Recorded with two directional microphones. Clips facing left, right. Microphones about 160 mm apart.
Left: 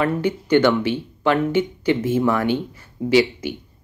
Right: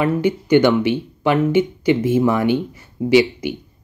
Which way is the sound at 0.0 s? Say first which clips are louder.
Right 3 dB; 15° right (ahead or behind).